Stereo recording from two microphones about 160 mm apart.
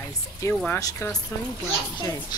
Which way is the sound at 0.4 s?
20° left (ahead or behind).